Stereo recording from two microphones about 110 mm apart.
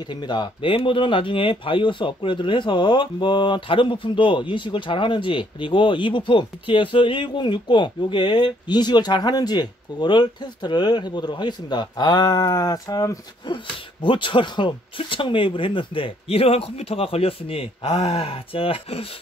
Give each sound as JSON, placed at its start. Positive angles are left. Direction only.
{"t": 0.1, "sound": "speech", "side_deg": 45}
{"t": 14.0, "sound": "speech", "side_deg": 50}